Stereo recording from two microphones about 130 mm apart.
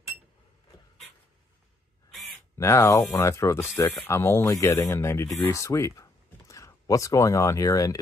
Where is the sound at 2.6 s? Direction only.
20° left (ahead or behind).